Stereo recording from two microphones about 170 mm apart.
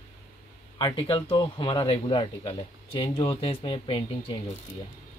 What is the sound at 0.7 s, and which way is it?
Speech, 30° left (ahead or behind).